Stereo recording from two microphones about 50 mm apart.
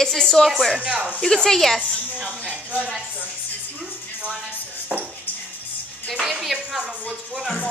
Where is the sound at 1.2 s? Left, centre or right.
Centre.